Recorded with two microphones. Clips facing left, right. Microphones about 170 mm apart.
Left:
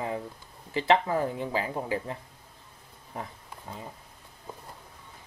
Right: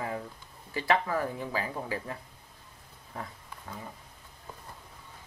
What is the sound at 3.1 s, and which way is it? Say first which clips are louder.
Wild animals: left 2 dB; 20° left (ahead or behind).